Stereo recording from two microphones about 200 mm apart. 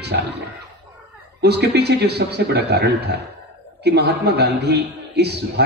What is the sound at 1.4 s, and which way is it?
A man's voice, 55° right (ahead or behind).